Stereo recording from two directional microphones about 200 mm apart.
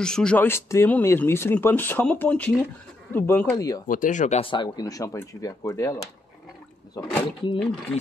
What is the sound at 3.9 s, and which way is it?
Speech, 40° left (ahead or behind).